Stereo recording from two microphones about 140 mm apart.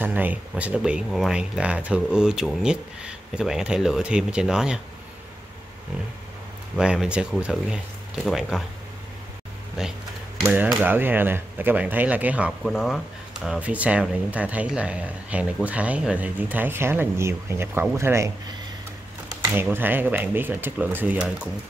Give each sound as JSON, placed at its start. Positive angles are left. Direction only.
{"t": 0.0, "sound": "speech", "side_deg": -10}
{"t": 6.8, "sound": "speech", "side_deg": -5}
{"t": 9.8, "sound": "speech", "side_deg": -5}
{"t": 12.6, "sound": "speech", "side_deg": 0}
{"t": 19.5, "sound": "speech", "side_deg": -15}